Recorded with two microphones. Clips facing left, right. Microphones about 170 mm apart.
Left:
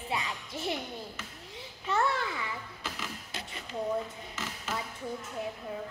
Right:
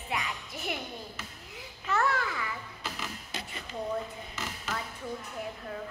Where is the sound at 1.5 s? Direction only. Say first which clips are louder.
Even; 30° left (ahead or behind).